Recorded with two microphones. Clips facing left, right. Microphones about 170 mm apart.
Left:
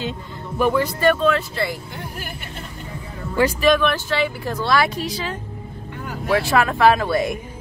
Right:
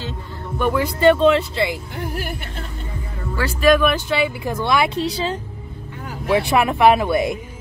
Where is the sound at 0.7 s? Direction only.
20° right (ahead or behind).